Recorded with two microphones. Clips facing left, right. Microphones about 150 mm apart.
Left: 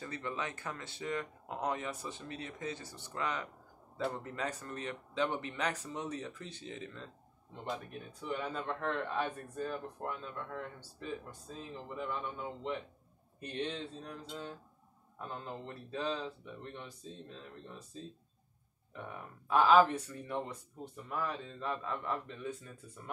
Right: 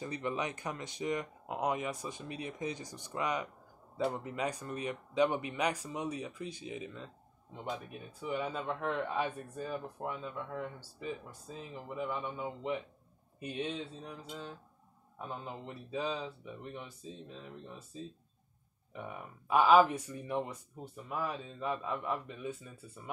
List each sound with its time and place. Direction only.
0.0 s speech: 20° right (ahead or behind)